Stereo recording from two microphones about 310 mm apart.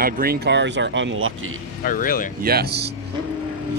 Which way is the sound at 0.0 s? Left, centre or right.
Right.